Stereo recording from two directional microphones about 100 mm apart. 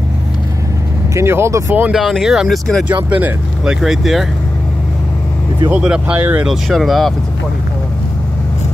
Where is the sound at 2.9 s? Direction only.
15° right (ahead or behind).